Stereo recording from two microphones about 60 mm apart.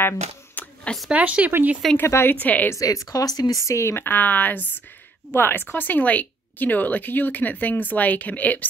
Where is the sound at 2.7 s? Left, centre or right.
Left.